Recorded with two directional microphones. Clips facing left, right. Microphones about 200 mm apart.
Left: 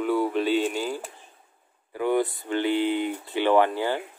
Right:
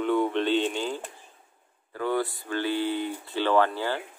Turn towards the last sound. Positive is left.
turn(degrees=15)  # may be behind; listen again after turning